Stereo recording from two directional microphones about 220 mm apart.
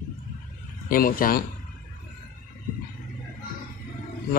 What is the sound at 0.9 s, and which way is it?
Speech, 40° left (ahead or behind).